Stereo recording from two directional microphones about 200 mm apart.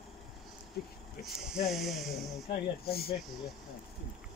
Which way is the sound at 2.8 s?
50° left (ahead or behind).